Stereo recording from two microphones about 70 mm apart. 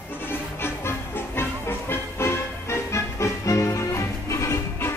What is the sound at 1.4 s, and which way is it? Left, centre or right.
Music, left.